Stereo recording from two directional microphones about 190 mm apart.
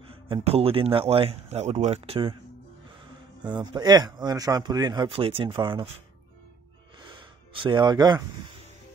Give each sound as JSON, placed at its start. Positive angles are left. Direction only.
{"t": 0.0, "sound": "speech", "side_deg": -30}
{"t": 3.4, "sound": "speech", "side_deg": -20}
{"t": 7.0, "sound": "gasp", "side_deg": -25}